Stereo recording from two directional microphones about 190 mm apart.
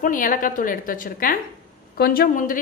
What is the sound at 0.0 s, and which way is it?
A woman's voice, 45° left (ahead or behind).